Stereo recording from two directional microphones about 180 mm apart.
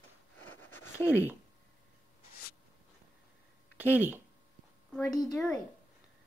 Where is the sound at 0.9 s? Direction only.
10° right (ahead or behind).